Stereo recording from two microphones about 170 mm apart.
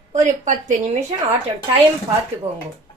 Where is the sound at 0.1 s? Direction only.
45° right (ahead or behind).